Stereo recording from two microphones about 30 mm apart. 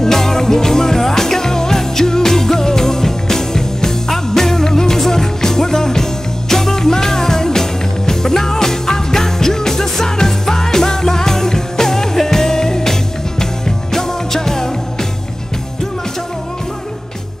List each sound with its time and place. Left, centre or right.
0.0 s music: centre